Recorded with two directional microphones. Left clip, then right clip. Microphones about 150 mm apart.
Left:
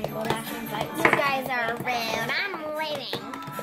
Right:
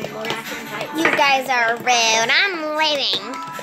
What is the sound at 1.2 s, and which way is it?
A child's voice, 65° right (ahead or behind).